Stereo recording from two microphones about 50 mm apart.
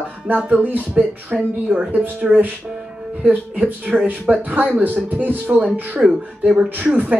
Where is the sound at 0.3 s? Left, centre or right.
Right.